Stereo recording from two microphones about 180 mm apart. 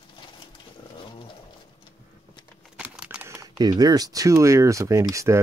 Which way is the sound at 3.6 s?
20° right (ahead or behind).